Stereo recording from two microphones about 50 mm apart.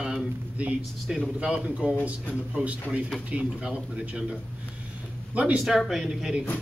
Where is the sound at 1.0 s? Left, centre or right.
Centre.